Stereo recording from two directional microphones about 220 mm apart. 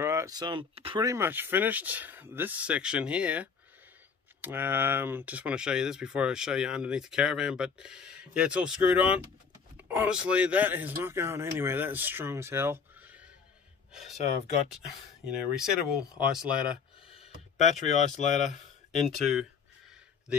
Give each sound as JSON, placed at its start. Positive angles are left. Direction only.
{"t": 0.0, "sound": "speech", "side_deg": -10}
{"t": 15.5, "sound": "speech", "side_deg": -5}
{"t": 17.1, "sound": "speech", "side_deg": 30}
{"t": 18.9, "sound": "speech", "side_deg": 0}